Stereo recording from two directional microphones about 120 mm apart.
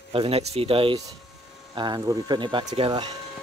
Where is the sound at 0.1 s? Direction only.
55° right (ahead or behind).